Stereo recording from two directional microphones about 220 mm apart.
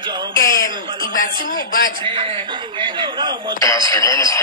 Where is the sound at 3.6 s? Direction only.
15° left (ahead or behind).